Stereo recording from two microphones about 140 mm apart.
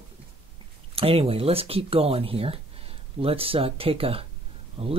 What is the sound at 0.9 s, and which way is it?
Speech, 45° right (ahead or behind).